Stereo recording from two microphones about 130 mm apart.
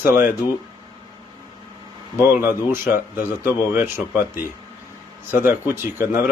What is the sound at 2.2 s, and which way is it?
Speech, 15° right (ahead or behind).